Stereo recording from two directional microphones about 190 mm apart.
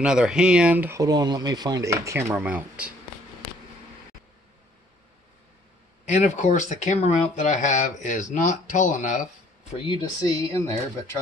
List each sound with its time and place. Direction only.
0.0 s speech: 5° right (ahead or behind)
6.0 s speech: 40° left (ahead or behind)
9.8 s speech: 20° left (ahead or behind)